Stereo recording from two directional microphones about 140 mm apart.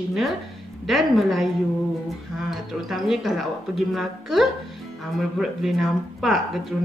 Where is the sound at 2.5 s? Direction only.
Centre (ahead or behind).